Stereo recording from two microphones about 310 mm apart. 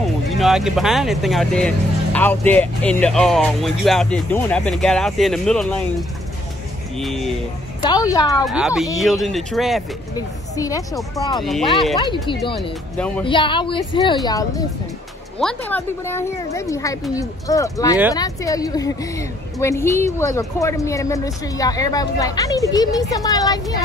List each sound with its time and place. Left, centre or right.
0.0 s speech: centre
7.8 s a woman's voice: centre
8.5 s speech: centre
10.1 s a woman's voice: centre
11.4 s speech: centre
12.0 s a woman's voice: centre
12.9 s speech: centre
13.2 s a woman's voice: centre